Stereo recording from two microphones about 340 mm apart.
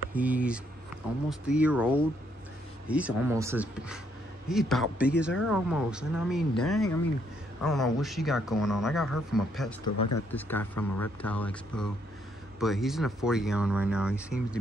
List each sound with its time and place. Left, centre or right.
0.1 s speech: centre
9.8 s speech: left
10.3 s speech: centre